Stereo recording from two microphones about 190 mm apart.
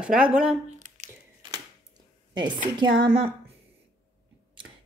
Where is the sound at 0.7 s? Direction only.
40° right (ahead or behind).